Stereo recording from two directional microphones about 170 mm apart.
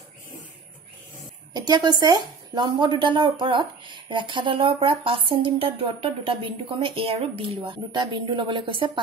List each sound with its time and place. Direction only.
1.5 s speech: 25° right (ahead or behind)